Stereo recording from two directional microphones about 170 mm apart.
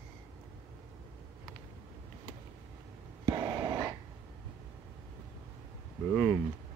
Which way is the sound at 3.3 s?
25° right (ahead or behind).